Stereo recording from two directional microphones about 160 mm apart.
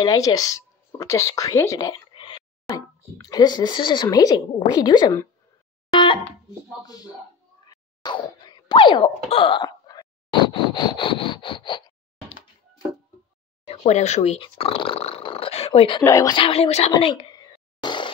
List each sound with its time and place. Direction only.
0.0 s speech: 25° left (ahead or behind)
5.9 s a sound: 30° left (ahead or behind)
6.8 s speech: 25° left (ahead or behind)
7.6 s a sound: 25° left (ahead or behind)
10.7 s wood: 30° left (ahead or behind)
13.7 s speech: 45° left (ahead or behind)
14.4 s speech: 35° left (ahead or behind)
16.0 s speech: 15° left (ahead or behind)
16.3 s wood: 35° left (ahead or behind)
16.9 s a sound: 30° left (ahead or behind)